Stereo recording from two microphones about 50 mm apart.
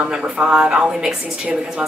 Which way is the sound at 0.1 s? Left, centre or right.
Centre.